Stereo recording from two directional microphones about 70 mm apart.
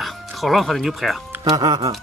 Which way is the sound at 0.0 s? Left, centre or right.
Centre.